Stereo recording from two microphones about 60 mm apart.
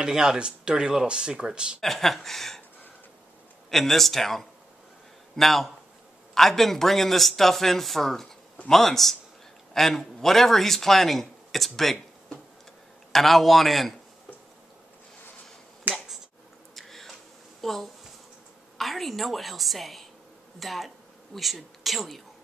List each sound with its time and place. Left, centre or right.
0.0 s speech: centre
1.8 s speech: centre
3.7 s a man's voice: centre
13.1 s speech: centre
15.9 s finger snapping: right
16.7 s a sound: centre
18.8 s speech: centre